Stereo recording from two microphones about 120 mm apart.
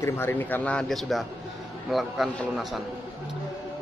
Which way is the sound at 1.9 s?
Centre (ahead or behind).